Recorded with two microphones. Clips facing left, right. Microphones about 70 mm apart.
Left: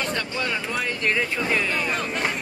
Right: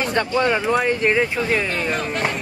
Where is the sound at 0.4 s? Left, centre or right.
Right.